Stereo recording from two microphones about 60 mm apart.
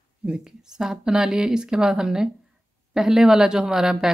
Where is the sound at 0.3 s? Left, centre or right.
Centre.